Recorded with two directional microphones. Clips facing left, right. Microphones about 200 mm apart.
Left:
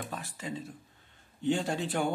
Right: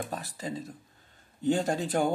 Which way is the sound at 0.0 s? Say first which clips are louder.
Right 3 dB; 40° right (ahead or behind).